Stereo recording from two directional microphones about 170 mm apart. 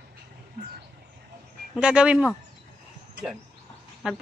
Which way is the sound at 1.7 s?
5° right (ahead or behind).